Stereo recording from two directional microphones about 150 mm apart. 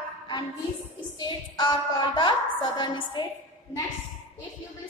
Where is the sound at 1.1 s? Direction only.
30° left (ahead or behind).